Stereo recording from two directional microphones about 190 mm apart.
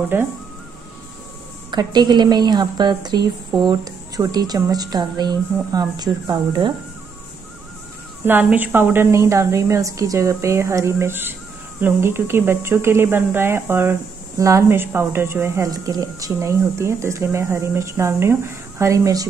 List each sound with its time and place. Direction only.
0.1 s speech: 10° right (ahead or behind)
1.7 s a woman's voice: 20° right (ahead or behind)
8.3 s speech: 10° right (ahead or behind)